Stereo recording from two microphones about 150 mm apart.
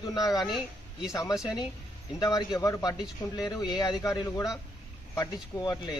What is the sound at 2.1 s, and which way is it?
Speech, 25° left (ahead or behind).